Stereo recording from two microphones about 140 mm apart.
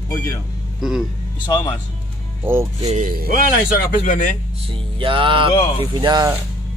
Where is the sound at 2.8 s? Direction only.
60° right (ahead or behind); by 3.3 s 80° right.